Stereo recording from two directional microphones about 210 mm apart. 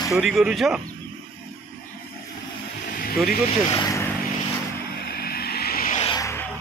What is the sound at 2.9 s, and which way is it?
Vehicle, 45° left (ahead or behind).